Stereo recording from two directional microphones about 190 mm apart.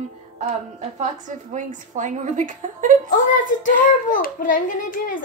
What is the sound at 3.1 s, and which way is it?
A child's voice, 45° left (ahead or behind).